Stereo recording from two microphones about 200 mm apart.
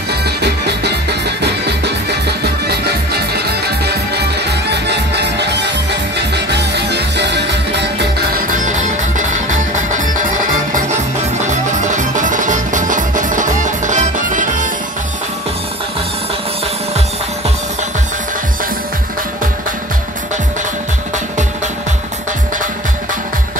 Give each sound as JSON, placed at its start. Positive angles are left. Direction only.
{"t": 0.1, "sound": "music", "side_deg": -55}
{"t": 8.5, "sound": "music", "side_deg": -40}